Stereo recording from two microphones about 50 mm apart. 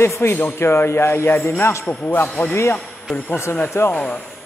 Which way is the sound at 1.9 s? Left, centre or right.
Left.